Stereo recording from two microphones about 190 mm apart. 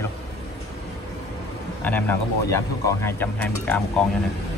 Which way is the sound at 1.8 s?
10° left (ahead or behind).